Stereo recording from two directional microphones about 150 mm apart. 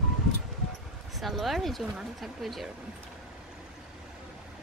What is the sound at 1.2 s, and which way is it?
Speech, centre (ahead or behind).